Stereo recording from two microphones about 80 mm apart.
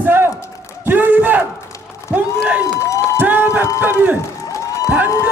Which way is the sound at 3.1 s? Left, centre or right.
Right.